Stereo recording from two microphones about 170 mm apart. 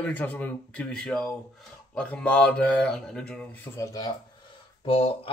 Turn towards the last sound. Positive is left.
turn(degrees=30)  # may be behind; listen again after turning